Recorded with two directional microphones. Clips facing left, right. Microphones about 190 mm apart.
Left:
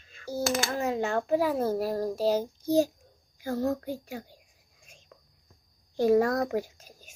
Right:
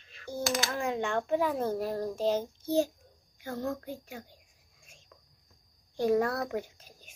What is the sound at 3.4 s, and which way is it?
Speech, 35° left (ahead or behind).